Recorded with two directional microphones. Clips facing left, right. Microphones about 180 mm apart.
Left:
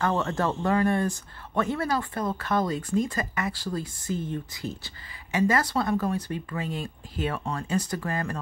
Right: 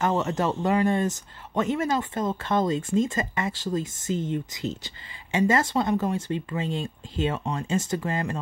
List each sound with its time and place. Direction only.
0.0 s speech: 20° right (ahead or behind)